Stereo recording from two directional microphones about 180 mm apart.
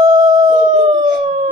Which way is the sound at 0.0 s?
20° right (ahead or behind).